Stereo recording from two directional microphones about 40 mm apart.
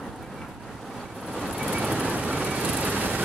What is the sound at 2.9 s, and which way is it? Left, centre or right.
Vehicle, right.